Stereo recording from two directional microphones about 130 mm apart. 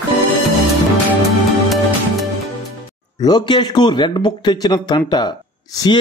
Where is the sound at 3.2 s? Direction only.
35° left (ahead or behind).